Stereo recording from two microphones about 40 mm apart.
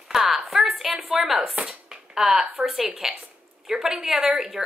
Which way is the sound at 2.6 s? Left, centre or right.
Right.